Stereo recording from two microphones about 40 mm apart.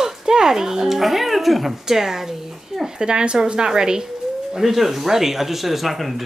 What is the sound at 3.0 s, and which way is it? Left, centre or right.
A woman's voice, right.